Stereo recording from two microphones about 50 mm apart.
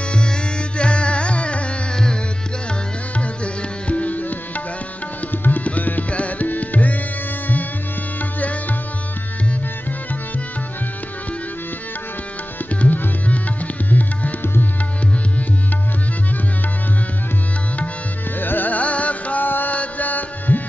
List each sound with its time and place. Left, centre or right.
0.1 s music: left
3.8 s tabla: left
8.2 s tabla: left
12.8 s tabla: left
14.4 s music: left
18.4 s music: left